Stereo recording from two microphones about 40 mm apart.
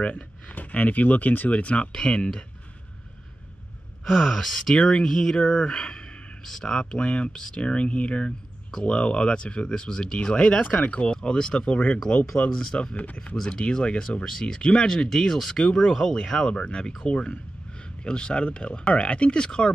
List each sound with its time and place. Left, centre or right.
0.0 s speech: left
1.5 s speech: left
4.0 s speech: centre
5.4 s speech: left
10.1 s speech: left
10.9 s speech: left
12.9 s speech: left
13.6 s speech: left
15.0 s speech: centre
15.9 s speech: centre
16.3 s speech: left